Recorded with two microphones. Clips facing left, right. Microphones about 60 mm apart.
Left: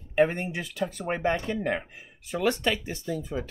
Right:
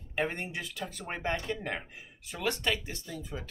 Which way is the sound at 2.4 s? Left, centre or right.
Centre.